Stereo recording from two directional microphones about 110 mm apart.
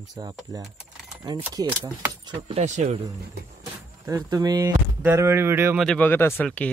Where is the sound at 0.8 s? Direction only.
5° right (ahead or behind).